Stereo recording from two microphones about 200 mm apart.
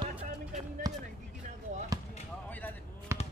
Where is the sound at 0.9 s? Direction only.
20° right (ahead or behind).